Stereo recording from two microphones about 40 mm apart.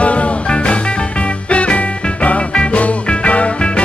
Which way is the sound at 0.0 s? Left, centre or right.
Left.